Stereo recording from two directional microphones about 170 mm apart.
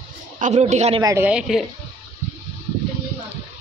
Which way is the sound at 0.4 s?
40° right (ahead or behind).